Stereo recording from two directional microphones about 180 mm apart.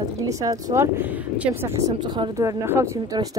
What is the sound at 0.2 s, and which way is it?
Speech, 20° right (ahead or behind).